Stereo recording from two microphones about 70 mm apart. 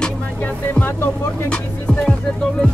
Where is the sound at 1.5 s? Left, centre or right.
Centre.